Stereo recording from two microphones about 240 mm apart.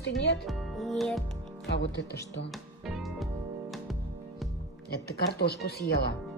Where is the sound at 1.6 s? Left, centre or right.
Left.